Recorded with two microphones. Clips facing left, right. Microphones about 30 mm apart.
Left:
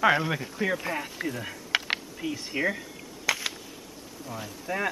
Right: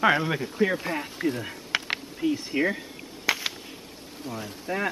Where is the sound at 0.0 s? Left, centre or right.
Centre.